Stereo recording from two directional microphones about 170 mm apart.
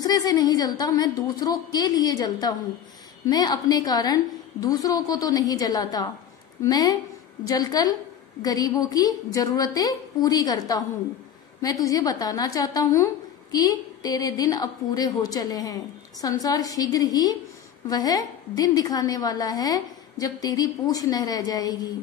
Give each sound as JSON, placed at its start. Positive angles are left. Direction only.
{"t": 0.0, "sound": "a woman's voice", "side_deg": 20}